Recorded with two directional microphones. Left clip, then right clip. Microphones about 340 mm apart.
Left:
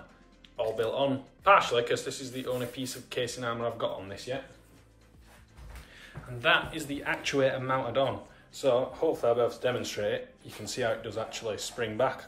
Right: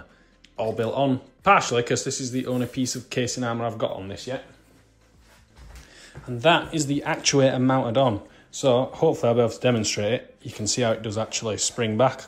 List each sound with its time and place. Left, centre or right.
0.7 s speech: centre
5.9 s speech: centre